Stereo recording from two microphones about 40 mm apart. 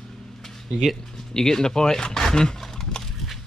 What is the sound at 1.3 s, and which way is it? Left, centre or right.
Speech, centre.